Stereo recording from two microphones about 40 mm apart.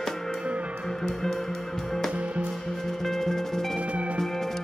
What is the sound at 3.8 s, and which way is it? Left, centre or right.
Music, right.